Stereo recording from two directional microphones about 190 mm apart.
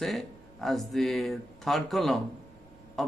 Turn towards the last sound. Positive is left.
turn(degrees=0)  # may be behind; listen again after turning